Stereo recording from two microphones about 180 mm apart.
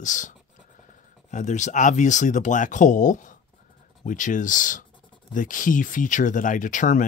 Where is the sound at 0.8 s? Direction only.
40° left (ahead or behind).